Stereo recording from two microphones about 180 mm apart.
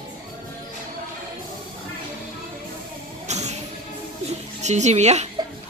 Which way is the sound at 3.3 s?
40° right (ahead or behind).